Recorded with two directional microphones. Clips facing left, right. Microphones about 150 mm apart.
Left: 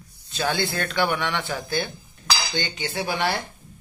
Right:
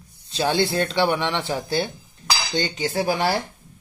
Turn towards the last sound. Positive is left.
turn(degrees=-35)  # may be behind; listen again after turning